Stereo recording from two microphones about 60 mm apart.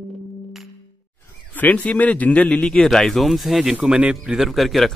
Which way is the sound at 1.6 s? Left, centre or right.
Left.